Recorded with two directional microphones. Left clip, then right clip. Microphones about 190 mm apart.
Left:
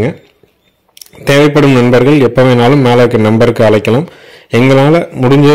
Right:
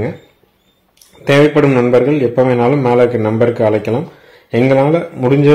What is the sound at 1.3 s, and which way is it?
A man's voice, 40° left (ahead or behind).